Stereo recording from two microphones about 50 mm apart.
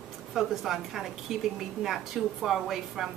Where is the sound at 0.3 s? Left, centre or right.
Centre.